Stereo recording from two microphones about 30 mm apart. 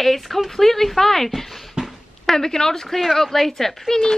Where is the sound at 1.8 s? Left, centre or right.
Right.